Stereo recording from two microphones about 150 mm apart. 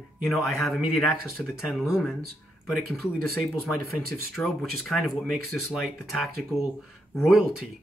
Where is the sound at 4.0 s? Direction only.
Centre (ahead or behind).